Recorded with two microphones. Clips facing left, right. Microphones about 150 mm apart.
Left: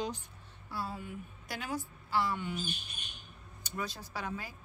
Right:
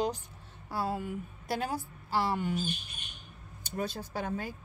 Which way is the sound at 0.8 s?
75° right (ahead or behind).